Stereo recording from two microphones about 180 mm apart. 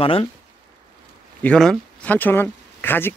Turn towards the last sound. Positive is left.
turn(degrees=10)  # may be behind; listen again after turning